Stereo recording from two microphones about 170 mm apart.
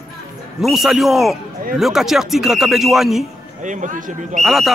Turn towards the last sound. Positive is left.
turn(degrees=0)  # may be behind; listen again after turning